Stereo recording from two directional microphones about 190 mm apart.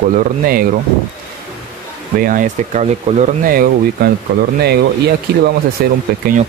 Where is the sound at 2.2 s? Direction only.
45° right (ahead or behind).